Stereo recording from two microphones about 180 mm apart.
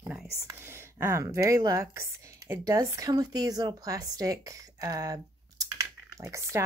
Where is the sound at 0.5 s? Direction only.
15° right (ahead or behind).